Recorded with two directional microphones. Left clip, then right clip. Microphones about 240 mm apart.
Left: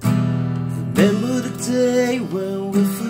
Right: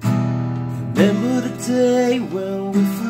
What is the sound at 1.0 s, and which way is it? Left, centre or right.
Music, centre.